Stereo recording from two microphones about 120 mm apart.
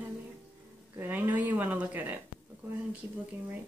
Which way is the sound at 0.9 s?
15° right (ahead or behind).